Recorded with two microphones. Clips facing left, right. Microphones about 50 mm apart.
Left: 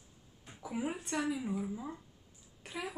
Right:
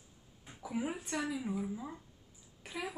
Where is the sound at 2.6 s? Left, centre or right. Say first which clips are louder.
Even; centre.